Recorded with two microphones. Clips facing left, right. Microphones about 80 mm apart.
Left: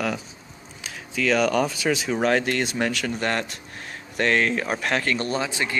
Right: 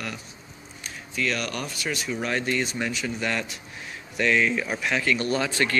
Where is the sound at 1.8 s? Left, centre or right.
Left.